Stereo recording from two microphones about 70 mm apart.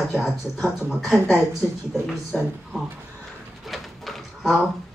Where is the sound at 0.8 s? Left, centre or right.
Centre.